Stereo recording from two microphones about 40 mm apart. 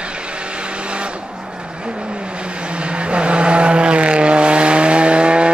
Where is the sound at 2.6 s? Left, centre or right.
Right.